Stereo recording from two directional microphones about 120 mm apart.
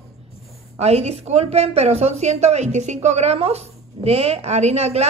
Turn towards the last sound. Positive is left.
turn(degrees=-65)  # may be behind; listen again after turning